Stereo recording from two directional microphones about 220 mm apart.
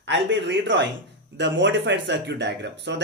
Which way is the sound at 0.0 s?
55° right (ahead or behind).